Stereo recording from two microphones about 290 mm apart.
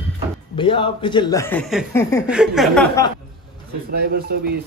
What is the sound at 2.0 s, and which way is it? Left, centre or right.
Speech, centre.